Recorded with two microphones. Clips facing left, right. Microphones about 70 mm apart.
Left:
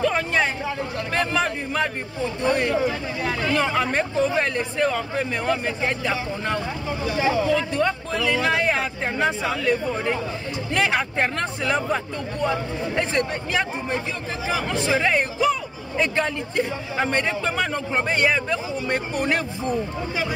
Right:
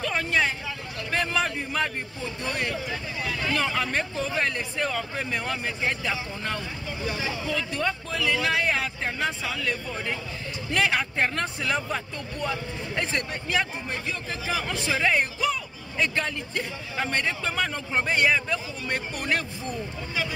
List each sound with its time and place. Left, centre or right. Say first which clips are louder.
0.0 s a sound: left 4 dB; centre
1.1 s speech: left 3 dB; centre
2.9 s speech: left 5 dB; left
3.5 s speech: left 5 dB; centre
7.2 s speech: left 10 dB; left
7.7 s speech: left 5 dB; centre; by 10.1 s left
10.7 s speech: left 2 dB; centre